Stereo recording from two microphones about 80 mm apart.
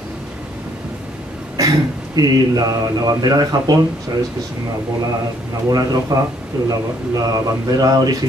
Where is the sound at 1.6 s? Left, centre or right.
Right.